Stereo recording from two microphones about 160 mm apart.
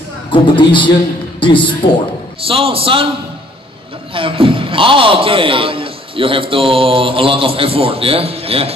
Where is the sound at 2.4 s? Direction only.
35° right (ahead or behind).